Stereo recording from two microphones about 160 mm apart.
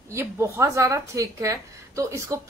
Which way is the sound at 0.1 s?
15° right (ahead or behind).